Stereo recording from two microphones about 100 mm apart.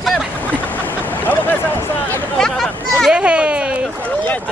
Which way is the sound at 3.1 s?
10° right (ahead or behind).